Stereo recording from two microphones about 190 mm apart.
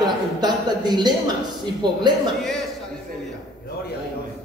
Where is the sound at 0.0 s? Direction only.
20° right (ahead or behind).